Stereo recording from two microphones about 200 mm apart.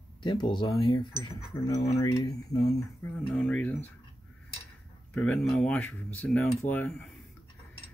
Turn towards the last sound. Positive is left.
turn(degrees=10)  # may be behind; listen again after turning